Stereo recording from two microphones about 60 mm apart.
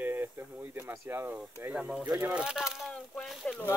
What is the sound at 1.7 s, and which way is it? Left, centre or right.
Speech, centre.